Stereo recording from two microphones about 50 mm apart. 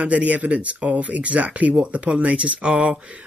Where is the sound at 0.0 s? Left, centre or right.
Right.